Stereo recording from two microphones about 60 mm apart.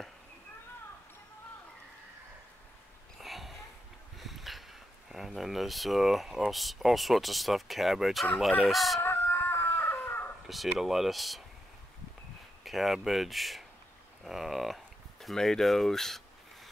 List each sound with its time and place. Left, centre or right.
3.2 s a sound: centre
5.1 s speech: centre
9.0 s chicken: left
10.4 s speech: centre
12.6 s speech: centre
14.2 s a sound: centre